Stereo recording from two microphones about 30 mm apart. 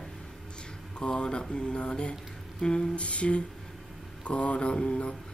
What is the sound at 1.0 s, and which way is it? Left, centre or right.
Mantra, left.